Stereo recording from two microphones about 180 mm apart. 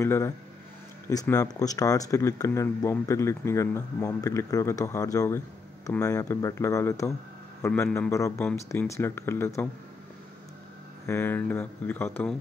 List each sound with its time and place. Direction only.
0.0 s speech: 15° left (ahead or behind)
11.1 s speech: 15° left (ahead or behind)